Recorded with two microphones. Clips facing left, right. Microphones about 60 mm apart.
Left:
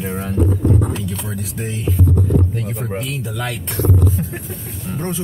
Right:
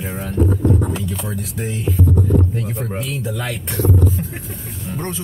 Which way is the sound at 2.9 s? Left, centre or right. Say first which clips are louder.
Even; centre.